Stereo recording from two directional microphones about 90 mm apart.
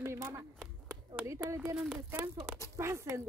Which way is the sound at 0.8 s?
35° right (ahead or behind).